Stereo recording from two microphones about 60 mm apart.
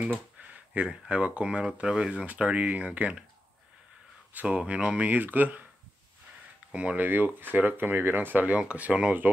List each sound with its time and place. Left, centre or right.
0.4 s a sound: right
0.8 s speech: centre
4.3 s speech: right
6.7 s speech: right
7.1 s speech: right